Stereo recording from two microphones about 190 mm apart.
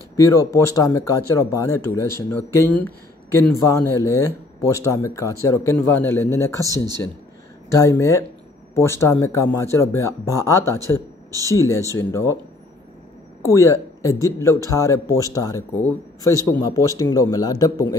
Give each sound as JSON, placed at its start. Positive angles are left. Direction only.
{"t": 0.2, "sound": "a man's voice", "side_deg": 15}
{"t": 7.7, "sound": "a man's voice", "side_deg": 15}
{"t": 13.5, "sound": "a man's voice", "side_deg": 15}